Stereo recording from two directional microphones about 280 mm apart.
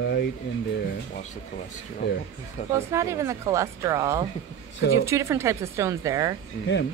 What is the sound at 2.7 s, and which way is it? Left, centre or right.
Speech, centre.